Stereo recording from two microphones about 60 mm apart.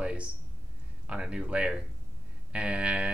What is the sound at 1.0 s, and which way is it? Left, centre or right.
Speech, centre.